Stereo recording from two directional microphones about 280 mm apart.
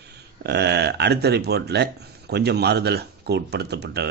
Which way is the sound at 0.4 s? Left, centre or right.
Right.